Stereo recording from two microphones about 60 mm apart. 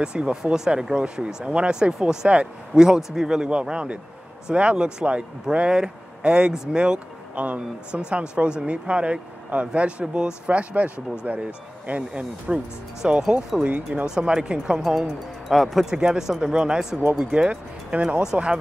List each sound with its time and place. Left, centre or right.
0.0 s speech: centre
13.6 s speech: right
14.0 s speech: centre
15.4 s speech: centre